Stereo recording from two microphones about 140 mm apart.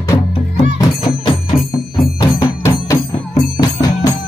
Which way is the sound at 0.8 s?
35° left (ahead or behind).